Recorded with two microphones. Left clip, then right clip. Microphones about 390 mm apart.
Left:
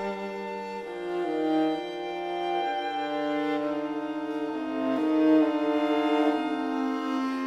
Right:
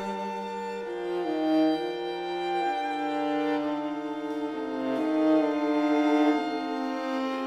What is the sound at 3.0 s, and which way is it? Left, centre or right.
Music, centre.